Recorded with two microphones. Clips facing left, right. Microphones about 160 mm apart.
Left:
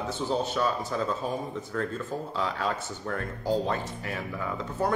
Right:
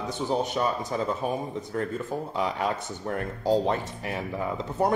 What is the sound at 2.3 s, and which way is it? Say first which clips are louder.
Speech: right 2 dB; 20° right (ahead or behind).